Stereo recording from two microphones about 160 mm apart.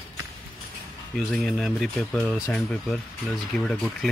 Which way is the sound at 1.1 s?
Centre (ahead or behind).